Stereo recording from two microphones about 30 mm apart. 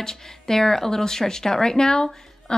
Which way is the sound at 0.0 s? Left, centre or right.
Centre.